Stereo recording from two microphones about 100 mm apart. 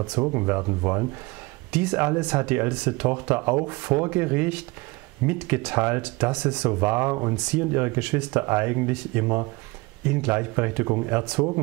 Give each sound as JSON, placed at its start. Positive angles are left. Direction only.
{"t": 0.3, "sound": "speech", "side_deg": -20}
{"t": 1.7, "sound": "speech", "side_deg": -10}
{"t": 6.7, "sound": "speech", "side_deg": -20}